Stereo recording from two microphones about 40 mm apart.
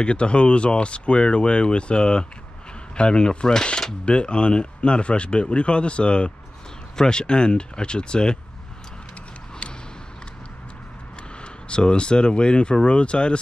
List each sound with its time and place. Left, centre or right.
0.0 s a man's voice: left
9.6 s a sound: left
11.4 s a man's voice: left